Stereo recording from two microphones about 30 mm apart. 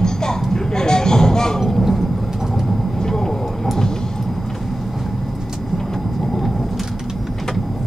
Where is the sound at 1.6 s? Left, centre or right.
Centre.